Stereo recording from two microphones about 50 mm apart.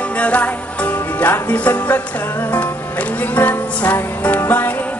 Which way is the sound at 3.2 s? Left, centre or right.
Left.